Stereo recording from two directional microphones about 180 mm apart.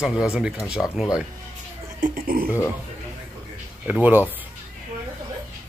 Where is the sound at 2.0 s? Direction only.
50° right (ahead or behind).